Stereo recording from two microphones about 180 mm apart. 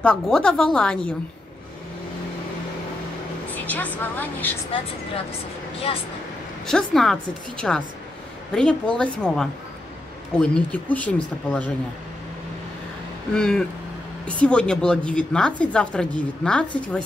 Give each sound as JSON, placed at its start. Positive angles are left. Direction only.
{"t": 0.0, "sound": "a woman's voice", "side_deg": 5}
{"t": 3.5, "sound": "speech", "side_deg": 10}
{"t": 5.8, "sound": "speech", "side_deg": 30}
{"t": 6.6, "sound": "a woman's voice", "side_deg": 0}
{"t": 13.3, "sound": "a woman's voice", "side_deg": 5}